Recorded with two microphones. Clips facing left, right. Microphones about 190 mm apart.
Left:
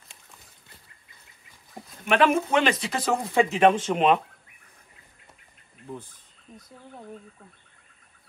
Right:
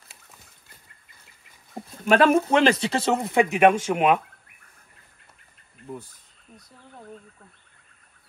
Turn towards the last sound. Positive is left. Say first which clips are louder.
# left 3 dB
turn(degrees=-5)  # may be behind; listen again after turning